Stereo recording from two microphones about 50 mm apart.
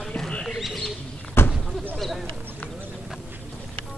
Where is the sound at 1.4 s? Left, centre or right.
Left.